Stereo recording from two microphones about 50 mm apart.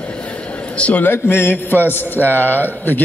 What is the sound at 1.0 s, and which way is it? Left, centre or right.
A man's voice, left.